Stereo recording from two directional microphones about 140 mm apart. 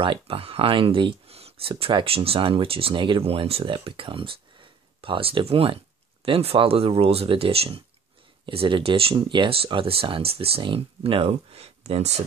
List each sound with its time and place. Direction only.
0.0 s speech: 40° right (ahead or behind)